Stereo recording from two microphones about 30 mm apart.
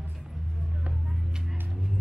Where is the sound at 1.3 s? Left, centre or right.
Centre.